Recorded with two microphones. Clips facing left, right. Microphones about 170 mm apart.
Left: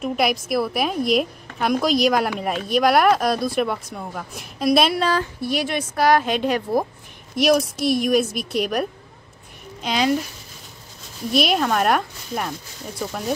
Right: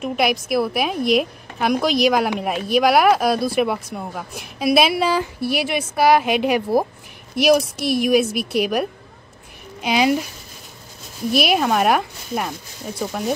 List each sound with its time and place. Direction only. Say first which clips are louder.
0.0 s a woman's voice: right 1 dB; centre (ahead or behind)
11.3 s speech: right 1 dB; 5° right (ahead or behind)